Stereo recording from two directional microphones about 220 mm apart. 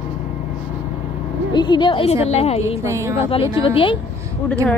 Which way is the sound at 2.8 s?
15° right (ahead or behind).